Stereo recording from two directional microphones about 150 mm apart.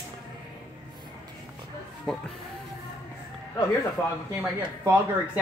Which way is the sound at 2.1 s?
5° left (ahead or behind).